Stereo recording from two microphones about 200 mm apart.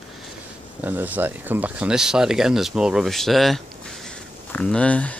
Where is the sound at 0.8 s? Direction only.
10° right (ahead or behind).